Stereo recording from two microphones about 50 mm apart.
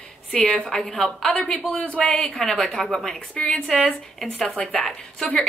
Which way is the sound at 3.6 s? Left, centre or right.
Centre.